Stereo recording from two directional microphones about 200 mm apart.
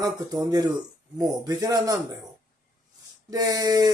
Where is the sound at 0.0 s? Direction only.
20° right (ahead or behind).